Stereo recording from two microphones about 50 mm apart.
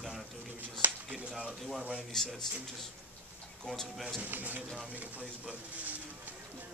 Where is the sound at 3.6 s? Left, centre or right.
Centre.